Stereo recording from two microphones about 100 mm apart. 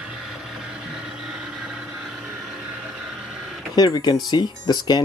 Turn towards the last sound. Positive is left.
turn(degrees=45)  # may be behind; listen again after turning